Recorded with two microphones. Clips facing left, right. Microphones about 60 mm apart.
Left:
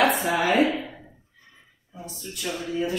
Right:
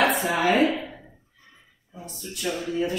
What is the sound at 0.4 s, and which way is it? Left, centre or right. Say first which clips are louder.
Speech: right 1 dB; centre.